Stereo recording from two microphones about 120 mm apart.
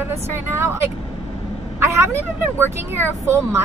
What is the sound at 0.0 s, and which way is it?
A woman's voice, 20° right (ahead or behind).